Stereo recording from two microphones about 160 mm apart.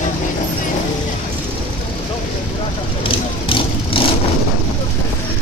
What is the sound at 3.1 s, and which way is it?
Vehicle, 35° left (ahead or behind).